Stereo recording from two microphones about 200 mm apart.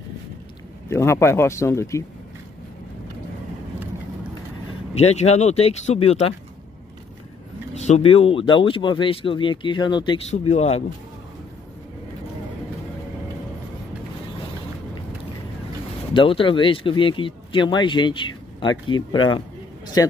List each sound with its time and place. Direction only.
0.8 s speech: 15° left (ahead or behind)
4.9 s speech: 30° left (ahead or behind)
7.7 s speech: 35° left (ahead or behind)
16.1 s speech: 25° left (ahead or behind)